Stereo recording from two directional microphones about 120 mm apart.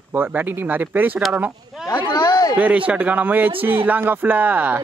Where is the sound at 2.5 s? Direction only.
10° right (ahead or behind).